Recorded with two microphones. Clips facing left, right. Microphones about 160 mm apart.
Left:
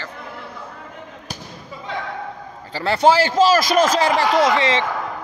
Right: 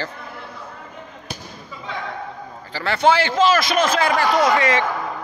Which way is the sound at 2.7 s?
35° left (ahead or behind).